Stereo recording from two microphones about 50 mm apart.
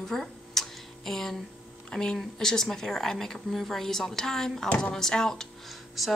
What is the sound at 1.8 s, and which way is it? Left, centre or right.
A woman's voice, centre.